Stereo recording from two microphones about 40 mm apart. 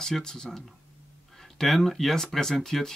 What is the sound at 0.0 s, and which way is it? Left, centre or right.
Speech, centre.